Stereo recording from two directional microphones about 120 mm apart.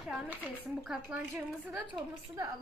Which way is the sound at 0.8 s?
15° right (ahead or behind).